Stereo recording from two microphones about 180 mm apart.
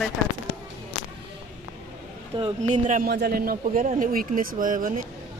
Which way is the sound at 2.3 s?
35° right (ahead or behind).